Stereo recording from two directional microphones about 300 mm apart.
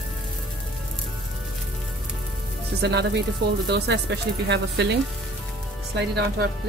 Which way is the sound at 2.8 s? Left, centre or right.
Right.